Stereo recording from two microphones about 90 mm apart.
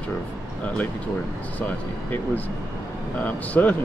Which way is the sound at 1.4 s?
15° left (ahead or behind).